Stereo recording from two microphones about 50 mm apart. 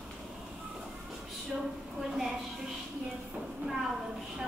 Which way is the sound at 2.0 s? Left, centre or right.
Centre.